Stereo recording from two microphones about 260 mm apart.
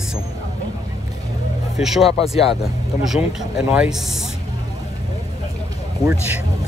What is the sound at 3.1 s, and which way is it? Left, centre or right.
Speech, centre.